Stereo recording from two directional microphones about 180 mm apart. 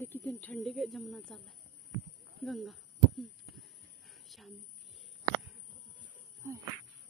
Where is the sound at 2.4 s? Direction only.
Centre (ahead or behind).